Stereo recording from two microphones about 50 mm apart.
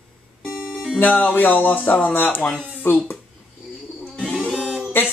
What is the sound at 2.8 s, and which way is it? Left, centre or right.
Speech, left.